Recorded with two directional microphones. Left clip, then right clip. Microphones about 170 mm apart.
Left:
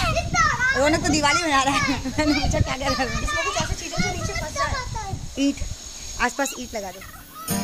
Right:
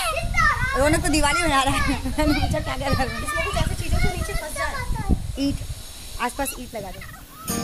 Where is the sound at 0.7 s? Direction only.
5° left (ahead or behind).